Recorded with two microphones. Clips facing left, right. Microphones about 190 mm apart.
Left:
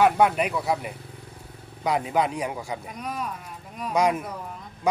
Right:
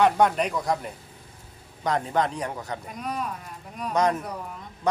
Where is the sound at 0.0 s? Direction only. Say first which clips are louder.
Left 1 dB; 5° left (ahead or behind).